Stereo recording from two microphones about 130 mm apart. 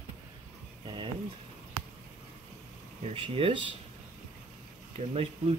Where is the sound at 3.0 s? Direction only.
45° right (ahead or behind).